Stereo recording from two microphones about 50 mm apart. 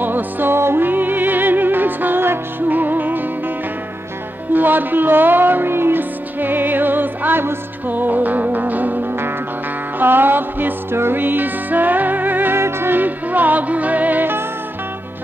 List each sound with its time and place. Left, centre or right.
0.0 s music: right
4.5 s music: right
12.5 s music: right
12.9 s music: right